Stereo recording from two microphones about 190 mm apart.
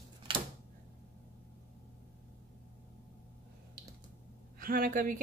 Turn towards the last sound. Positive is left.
turn(degrees=-45)  # may be behind; listen again after turning